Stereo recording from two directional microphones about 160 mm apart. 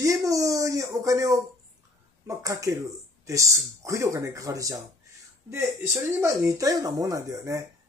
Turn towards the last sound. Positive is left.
turn(degrees=-20)  # may be behind; listen again after turning